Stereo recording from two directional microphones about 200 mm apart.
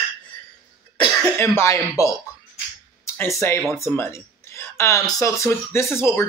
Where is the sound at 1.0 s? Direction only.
15° left (ahead or behind).